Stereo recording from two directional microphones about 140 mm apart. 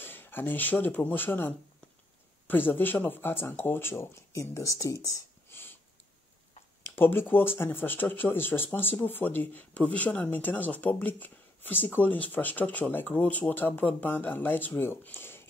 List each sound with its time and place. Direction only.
0.0 s speech: 15° left (ahead or behind)
7.0 s speech: 15° left (ahead or behind)